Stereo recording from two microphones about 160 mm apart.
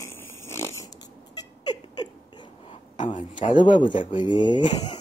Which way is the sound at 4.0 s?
30° left (ahead or behind).